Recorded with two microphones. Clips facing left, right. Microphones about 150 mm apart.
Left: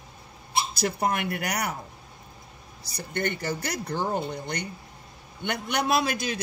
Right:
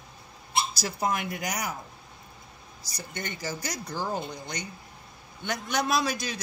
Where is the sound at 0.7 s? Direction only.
60° left (ahead or behind).